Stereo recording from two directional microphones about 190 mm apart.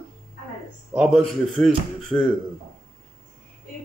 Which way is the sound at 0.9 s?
Centre (ahead or behind).